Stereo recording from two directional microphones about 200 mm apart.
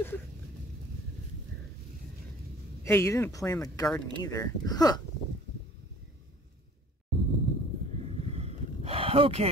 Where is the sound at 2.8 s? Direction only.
15° left (ahead or behind).